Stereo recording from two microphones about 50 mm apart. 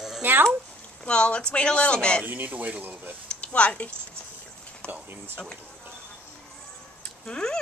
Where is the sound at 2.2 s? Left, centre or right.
Right.